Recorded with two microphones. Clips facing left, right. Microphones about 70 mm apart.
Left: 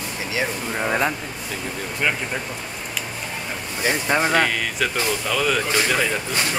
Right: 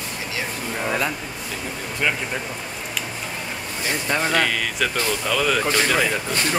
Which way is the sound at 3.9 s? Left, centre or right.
Centre.